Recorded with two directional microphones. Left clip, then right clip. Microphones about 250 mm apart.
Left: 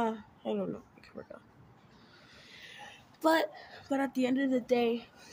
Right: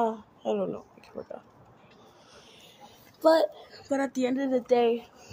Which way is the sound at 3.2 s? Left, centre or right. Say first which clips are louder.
Right 6 dB; left.